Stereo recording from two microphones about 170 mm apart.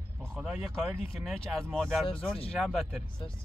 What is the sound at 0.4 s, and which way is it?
Speech, 5° right (ahead or behind).